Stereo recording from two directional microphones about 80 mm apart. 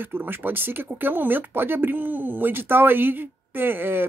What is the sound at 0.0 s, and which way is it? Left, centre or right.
Speech, right.